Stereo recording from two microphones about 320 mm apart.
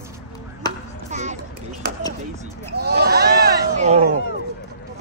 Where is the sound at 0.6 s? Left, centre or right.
Centre.